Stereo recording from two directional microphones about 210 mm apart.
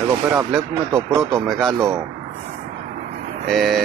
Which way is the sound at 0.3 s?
10° right (ahead or behind).